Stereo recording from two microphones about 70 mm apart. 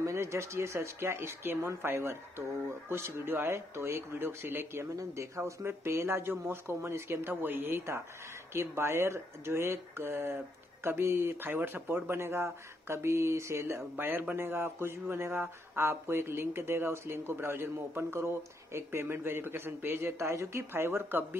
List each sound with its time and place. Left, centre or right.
0.0 s speech: right
13.9 s speech: right